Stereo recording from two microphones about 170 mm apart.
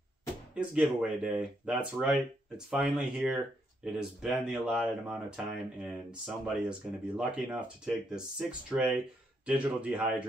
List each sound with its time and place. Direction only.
0.6 s speech: 5° right (ahead or behind)